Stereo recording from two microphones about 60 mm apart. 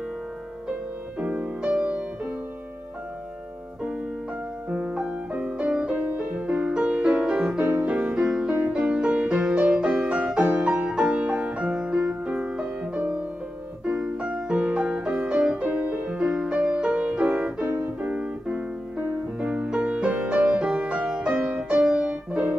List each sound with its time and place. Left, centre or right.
1.2 s music: right
4.6 s music: centre
7.6 s music: right
13.9 s music: centre
15.6 s music: right
16.1 s music: centre
17.6 s music: right
18.0 s music: centre